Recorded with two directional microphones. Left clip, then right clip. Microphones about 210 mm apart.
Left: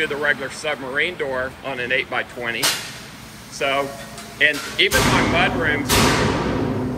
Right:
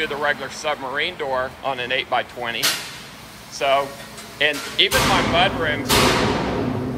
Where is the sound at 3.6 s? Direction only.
15° right (ahead or behind).